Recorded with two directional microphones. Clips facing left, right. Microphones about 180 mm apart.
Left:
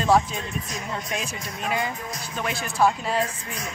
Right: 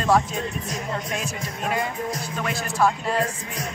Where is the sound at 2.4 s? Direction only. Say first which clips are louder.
Even; centre (ahead or behind).